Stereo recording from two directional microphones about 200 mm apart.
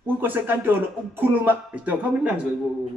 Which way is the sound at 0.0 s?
10° right (ahead or behind).